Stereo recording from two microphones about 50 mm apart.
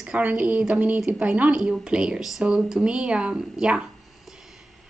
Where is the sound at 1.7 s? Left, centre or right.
Centre.